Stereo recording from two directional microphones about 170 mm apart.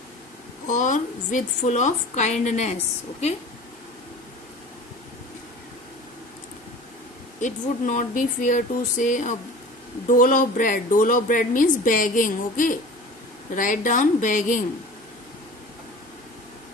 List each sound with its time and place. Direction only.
0.7 s a woman's voice: 45° left (ahead or behind)
7.3 s a woman's voice: 45° left (ahead or behind)